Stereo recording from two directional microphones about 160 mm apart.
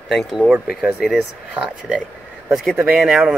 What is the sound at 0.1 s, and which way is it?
Speech, centre (ahead or behind).